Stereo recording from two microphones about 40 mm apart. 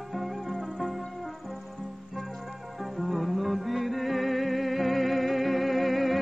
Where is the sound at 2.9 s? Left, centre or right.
Centre.